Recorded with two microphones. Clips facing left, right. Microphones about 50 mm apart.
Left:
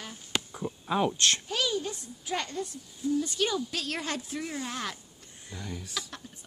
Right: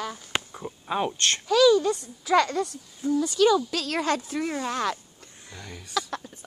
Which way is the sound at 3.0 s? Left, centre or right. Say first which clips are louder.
Right 3 dB; right.